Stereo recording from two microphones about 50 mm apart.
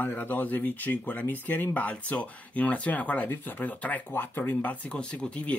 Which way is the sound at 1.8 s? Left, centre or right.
Left.